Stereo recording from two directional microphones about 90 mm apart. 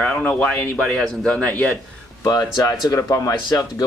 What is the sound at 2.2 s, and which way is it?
Speech, 40° left (ahead or behind).